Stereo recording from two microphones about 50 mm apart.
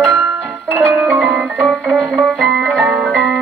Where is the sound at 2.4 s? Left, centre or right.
Centre.